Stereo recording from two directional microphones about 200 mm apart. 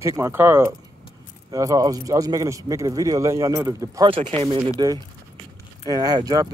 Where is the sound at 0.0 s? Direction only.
15° right (ahead or behind).